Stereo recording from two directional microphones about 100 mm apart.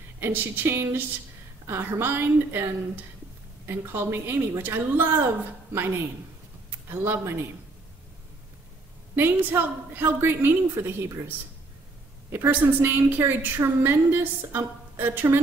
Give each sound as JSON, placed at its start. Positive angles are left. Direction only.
{"t": 0.2, "sound": "a woman's voice", "side_deg": -20}
{"t": 9.1, "sound": "a woman's voice", "side_deg": -20}